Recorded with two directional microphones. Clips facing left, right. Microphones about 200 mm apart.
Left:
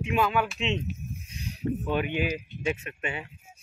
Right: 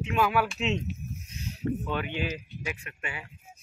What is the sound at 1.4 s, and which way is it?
Speech, 15° left (ahead or behind).